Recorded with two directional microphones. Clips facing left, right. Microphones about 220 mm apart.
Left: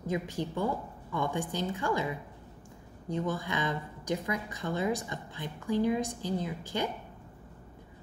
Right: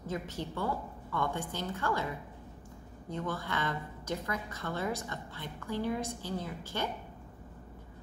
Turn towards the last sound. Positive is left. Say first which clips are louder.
# left 4 dB
turn(degrees=15)  # may be behind; listen again after turning